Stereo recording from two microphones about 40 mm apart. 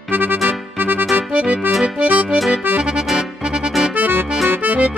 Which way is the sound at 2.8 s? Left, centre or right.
Right.